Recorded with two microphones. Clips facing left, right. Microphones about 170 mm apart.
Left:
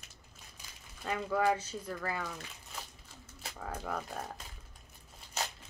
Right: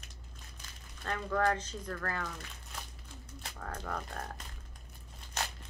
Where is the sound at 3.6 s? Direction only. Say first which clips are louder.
Left 2 dB; 5° left (ahead or behind).